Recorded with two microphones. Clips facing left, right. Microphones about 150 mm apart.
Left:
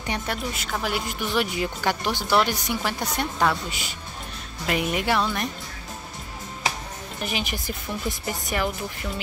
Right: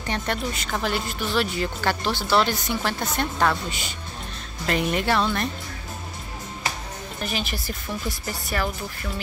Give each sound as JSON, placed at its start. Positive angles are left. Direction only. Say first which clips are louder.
{"t": 0.0, "sound": "speech", "louder": "right 2 dB", "side_deg": 10}
{"t": 7.2, "sound": "speech", "louder": "even", "side_deg": 15}